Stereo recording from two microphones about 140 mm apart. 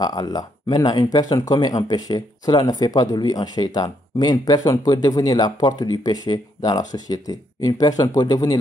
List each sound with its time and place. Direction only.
0.0 s speech: 30° left (ahead or behind)